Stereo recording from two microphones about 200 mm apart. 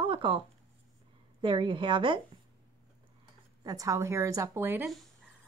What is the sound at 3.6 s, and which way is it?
A woman's voice, 15° right (ahead or behind).